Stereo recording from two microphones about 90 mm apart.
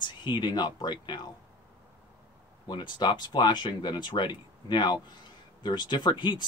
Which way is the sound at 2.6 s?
55° left (ahead or behind).